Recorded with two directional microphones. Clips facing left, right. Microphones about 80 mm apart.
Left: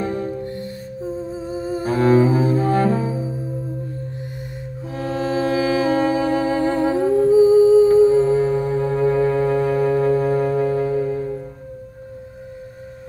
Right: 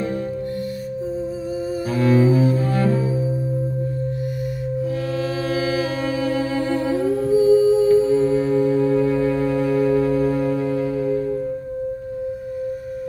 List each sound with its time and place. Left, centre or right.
1.7 s cello: left
5.0 s music: left